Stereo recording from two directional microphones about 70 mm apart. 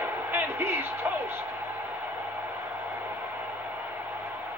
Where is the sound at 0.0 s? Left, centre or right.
Right.